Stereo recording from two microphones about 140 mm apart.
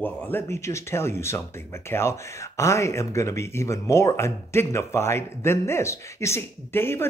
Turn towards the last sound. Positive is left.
turn(degrees=15)  # may be behind; listen again after turning